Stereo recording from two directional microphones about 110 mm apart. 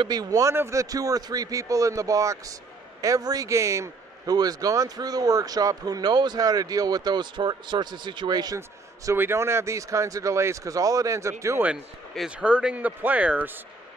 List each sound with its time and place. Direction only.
0.1 s a man's voice: 35° right (ahead or behind)
8.5 s speech: 20° right (ahead or behind)
11.6 s a man's voice: 5° right (ahead or behind)